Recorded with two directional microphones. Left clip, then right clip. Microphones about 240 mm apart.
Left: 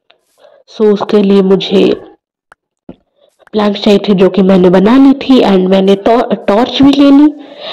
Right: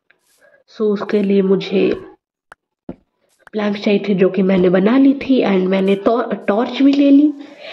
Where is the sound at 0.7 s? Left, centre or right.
Centre.